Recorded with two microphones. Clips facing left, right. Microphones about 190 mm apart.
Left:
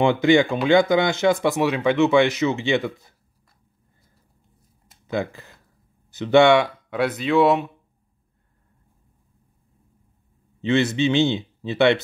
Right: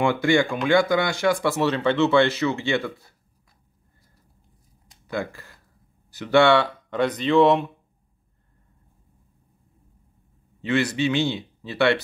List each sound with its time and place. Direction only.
0.0 s speech: 20° left (ahead or behind)
5.0 s speech: 20° left (ahead or behind); by 7.7 s 5° left (ahead or behind)
10.6 s speech: 25° left (ahead or behind)